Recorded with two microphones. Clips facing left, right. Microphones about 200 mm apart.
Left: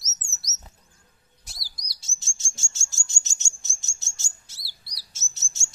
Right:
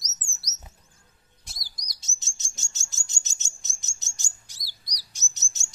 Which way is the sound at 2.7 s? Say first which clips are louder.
Left 1 dB; 20° right (ahead or behind).